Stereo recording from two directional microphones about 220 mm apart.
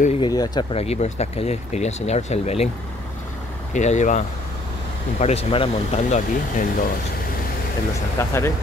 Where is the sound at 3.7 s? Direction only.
35° left (ahead or behind).